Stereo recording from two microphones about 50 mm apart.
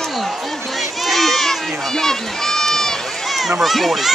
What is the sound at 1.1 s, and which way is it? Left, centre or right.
Run, centre.